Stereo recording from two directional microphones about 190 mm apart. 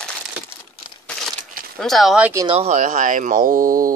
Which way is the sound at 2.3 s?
25° right (ahead or behind).